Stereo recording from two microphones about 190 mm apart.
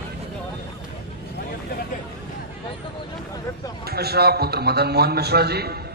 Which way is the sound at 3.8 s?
55° right (ahead or behind).